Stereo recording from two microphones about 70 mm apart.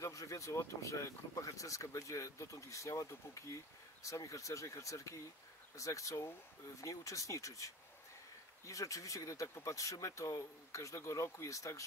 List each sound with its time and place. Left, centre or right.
0.0 s speech: left